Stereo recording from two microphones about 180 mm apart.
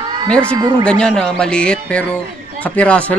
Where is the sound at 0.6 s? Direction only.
25° right (ahead or behind).